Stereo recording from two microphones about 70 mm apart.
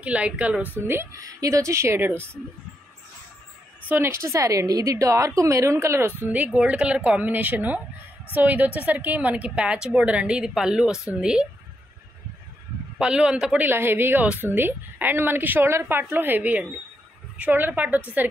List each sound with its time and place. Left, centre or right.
0.0 s a woman's voice: centre
0.7 s a woman's voice: right
1.1 s speech: right
2.0 s a woman's voice: right
3.9 s a woman's voice: right
6.3 s a woman's voice: centre
13.0 s speech: centre
13.6 s a woman's voice: right